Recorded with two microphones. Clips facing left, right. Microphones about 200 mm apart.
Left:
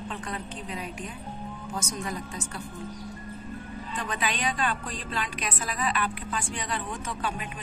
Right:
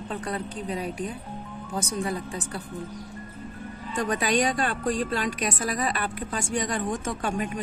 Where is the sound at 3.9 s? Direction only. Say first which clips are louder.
Right 8 dB; 45° right (ahead or behind).